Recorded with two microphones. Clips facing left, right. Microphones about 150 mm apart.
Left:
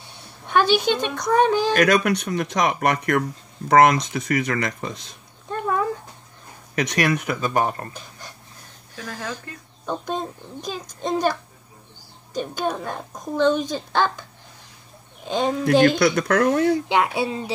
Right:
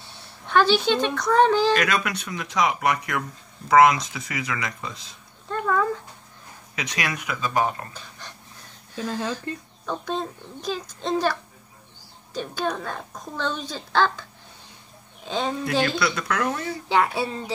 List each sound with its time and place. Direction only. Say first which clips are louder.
0.0 s speech: left 1 dB; 15° left (ahead or behind)
1.7 s speech: left 5 dB; 50° left (ahead or behind)
5.5 s a sound: even; 20° left (ahead or behind)
6.7 s speech: left 8 dB; 50° left (ahead or behind)
8.9 s speech: right 5 dB; 15° right (ahead or behind)
9.8 s a woman's voice: left 1 dB; 15° left (ahead or behind)
12.4 s a woman's voice: left 2 dB; 15° left (ahead or behind)
15.2 s a woman's voice: left 4 dB; 15° left (ahead or behind)
15.6 s speech: left 10 dB; 50° left (ahead or behind)
16.9 s a woman's voice: left 1 dB; 15° left (ahead or behind)